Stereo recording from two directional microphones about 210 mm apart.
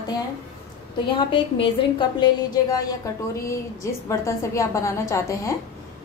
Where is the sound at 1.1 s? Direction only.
25° left (ahead or behind).